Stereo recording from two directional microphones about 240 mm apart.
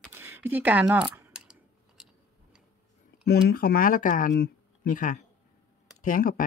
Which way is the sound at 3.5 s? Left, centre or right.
Left.